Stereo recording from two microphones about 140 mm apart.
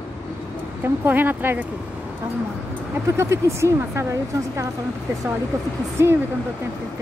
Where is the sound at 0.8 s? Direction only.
15° right (ahead or behind).